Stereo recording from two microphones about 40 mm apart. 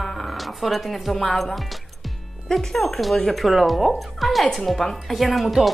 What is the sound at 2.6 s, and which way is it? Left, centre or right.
Speech, centre.